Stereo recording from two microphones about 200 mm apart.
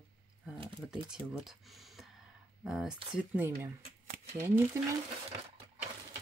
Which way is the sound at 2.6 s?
5° right (ahead or behind).